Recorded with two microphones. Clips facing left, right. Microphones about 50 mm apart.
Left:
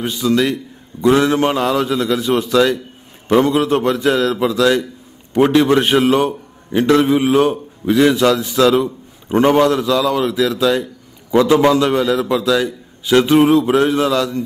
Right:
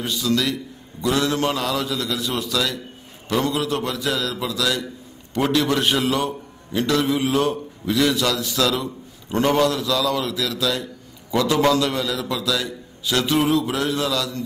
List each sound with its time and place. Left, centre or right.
0.0 s a man's voice: left